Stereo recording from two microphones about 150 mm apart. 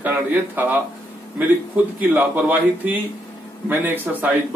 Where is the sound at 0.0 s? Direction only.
15° right (ahead or behind).